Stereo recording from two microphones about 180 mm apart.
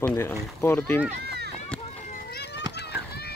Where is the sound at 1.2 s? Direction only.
65° right (ahead or behind).